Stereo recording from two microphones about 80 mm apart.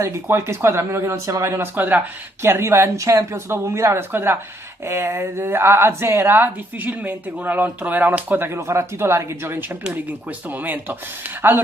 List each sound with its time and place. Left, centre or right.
0.0 s speech: right
2.4 s speech: right
8.5 s speech: right
9.7 s speech: centre